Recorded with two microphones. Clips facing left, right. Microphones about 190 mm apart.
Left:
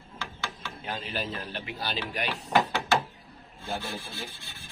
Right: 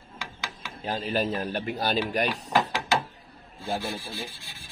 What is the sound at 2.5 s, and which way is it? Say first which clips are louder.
Ratchet: left 2 dB; 10° right (ahead or behind).